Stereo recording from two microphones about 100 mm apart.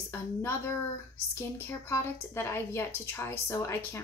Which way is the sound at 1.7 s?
30° left (ahead or behind).